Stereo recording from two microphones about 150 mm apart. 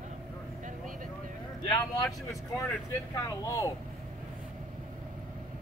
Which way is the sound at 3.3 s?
20° left (ahead or behind).